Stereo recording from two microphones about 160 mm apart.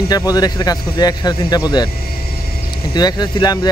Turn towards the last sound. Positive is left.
turn(degrees=25)  # may be behind; listen again after turning